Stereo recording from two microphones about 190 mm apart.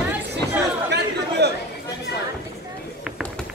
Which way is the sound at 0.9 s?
60° right (ahead or behind).